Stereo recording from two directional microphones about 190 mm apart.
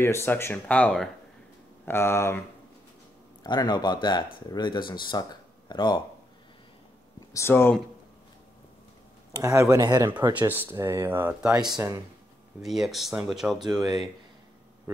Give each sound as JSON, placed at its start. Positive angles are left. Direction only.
{"t": 0.0, "sound": "speech", "side_deg": 15}
{"t": 3.4, "sound": "speech", "side_deg": 25}
{"t": 7.3, "sound": "speech", "side_deg": 10}
{"t": 9.3, "sound": "speech", "side_deg": -15}